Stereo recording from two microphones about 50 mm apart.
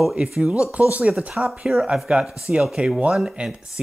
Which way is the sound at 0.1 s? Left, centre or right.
Right.